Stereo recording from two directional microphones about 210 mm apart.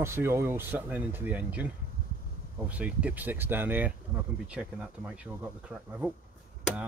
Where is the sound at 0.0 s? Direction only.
10° right (ahead or behind).